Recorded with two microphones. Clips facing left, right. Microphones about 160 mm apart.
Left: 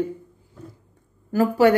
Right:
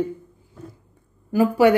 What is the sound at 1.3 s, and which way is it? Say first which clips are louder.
Speech: right 1 dB; 15° right (ahead or behind).